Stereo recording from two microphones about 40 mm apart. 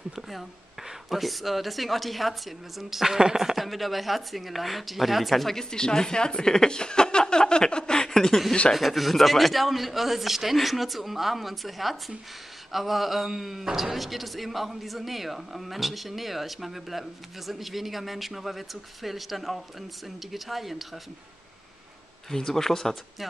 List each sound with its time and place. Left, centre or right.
1.1 s a man's voice: centre
8.7 s a man's voice: centre
22.3 s speech: centre